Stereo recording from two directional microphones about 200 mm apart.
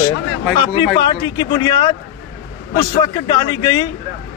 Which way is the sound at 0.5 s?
25° left (ahead or behind).